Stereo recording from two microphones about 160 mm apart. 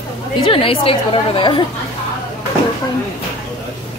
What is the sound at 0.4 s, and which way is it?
A woman's voice, 35° left (ahead or behind).